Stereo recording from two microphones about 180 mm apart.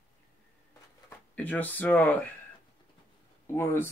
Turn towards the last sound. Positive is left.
turn(degrees=10)  # may be behind; listen again after turning